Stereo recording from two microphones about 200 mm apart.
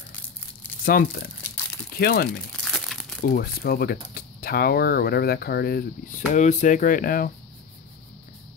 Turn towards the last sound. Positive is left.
turn(degrees=45)  # may be behind; listen again after turning